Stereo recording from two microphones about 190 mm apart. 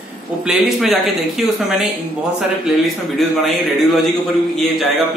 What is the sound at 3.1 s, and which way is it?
Speech, centre (ahead or behind).